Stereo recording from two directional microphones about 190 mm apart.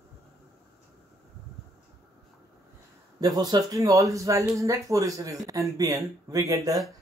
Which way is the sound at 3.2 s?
20° right (ahead or behind).